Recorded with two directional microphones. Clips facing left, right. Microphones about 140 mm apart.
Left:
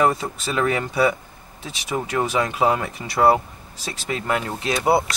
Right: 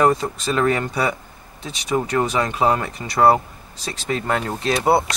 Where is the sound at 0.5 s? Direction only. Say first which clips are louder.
Right 2 dB; 45° right (ahead or behind).